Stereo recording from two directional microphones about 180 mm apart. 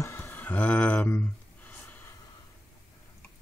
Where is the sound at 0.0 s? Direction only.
15° left (ahead or behind).